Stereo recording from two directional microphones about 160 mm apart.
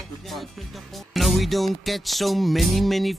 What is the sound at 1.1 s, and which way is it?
Music, centre (ahead or behind).